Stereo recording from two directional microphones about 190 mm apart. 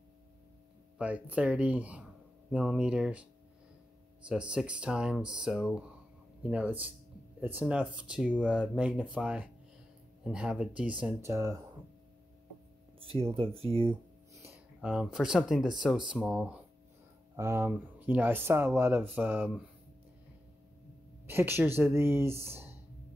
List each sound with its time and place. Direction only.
0.9 s speech: 5° right (ahead or behind)
4.3 s speech: 5° right (ahead or behind)
13.0 s speech: 30° right (ahead or behind)
14.3 s speech: 10° right (ahead or behind)
21.3 s speech: 10° right (ahead or behind)